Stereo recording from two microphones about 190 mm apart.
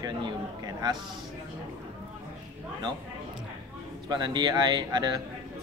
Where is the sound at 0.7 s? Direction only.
20° right (ahead or behind).